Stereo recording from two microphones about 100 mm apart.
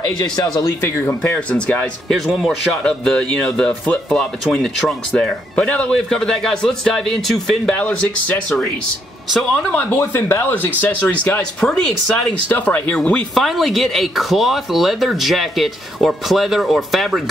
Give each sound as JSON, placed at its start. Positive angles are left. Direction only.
{"t": 0.6, "sound": "speech", "side_deg": 30}
{"t": 1.2, "sound": "speech", "side_deg": 15}
{"t": 2.1, "sound": "speech", "side_deg": 0}
{"t": 9.7, "sound": "speech", "side_deg": 20}
{"t": 11.6, "sound": "speech", "side_deg": 5}
{"t": 12.4, "sound": "speech", "side_deg": 20}
{"t": 13.3, "sound": "speech", "side_deg": 0}